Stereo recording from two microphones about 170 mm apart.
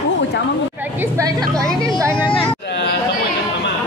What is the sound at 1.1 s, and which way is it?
Vehicle, 20° right (ahead or behind).